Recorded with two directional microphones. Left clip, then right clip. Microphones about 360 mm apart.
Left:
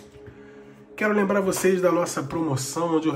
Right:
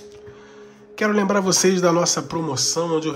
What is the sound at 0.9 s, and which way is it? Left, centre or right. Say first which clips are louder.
A man's voice: right 2 dB; centre.